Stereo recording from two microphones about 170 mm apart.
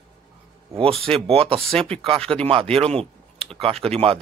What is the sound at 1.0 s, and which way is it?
Speech, 35° right (ahead or behind).